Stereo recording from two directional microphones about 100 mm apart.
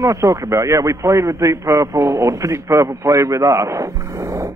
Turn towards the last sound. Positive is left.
turn(degrees=-30)  # may be behind; listen again after turning